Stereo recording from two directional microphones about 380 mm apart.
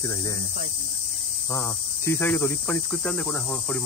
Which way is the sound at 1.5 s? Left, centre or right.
Centre.